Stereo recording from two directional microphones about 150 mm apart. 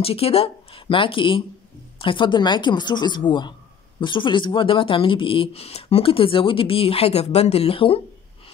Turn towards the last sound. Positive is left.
turn(degrees=40)  # may be behind; listen again after turning